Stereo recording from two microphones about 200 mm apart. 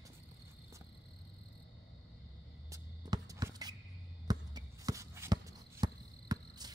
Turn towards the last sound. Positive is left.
turn(degrees=-20)  # may be behind; listen again after turning